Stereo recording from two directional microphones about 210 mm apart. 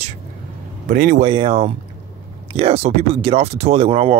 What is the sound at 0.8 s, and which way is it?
Speech, 40° right (ahead or behind).